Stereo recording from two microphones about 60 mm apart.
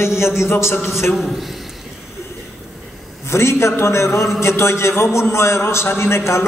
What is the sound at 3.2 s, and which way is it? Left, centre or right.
A man's voice, left.